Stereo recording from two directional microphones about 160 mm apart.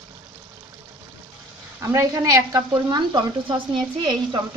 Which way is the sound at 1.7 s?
20° right (ahead or behind).